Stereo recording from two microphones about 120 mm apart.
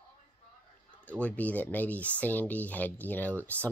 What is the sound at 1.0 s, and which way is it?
Speech, 10° left (ahead or behind).